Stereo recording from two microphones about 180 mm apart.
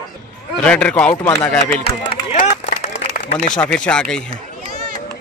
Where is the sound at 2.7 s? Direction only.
40° left (ahead or behind).